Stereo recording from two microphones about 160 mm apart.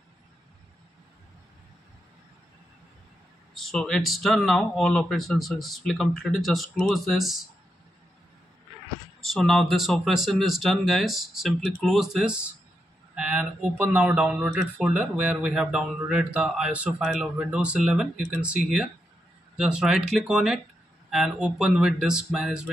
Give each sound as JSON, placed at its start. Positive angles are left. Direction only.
{"t": 3.5, "sound": "speech", "side_deg": 5}
{"t": 9.3, "sound": "speech", "side_deg": 0}